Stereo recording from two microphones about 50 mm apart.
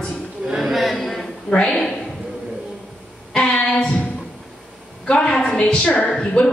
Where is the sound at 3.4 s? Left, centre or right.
Centre.